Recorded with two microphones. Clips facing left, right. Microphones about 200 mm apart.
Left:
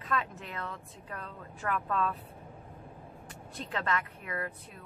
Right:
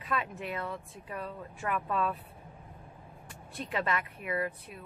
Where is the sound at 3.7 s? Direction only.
15° right (ahead or behind).